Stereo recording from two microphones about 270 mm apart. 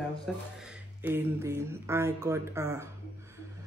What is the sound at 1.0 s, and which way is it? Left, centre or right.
Speech, centre.